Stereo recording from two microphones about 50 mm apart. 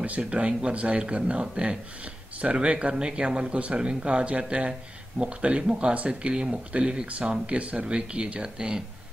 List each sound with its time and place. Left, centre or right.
0.0 s speech: right